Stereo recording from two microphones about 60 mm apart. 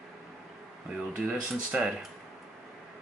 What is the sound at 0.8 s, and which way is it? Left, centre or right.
Speech, centre.